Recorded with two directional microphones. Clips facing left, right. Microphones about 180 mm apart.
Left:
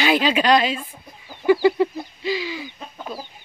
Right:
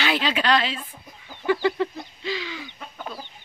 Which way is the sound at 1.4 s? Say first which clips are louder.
Left 6 dB; 10° left (ahead or behind).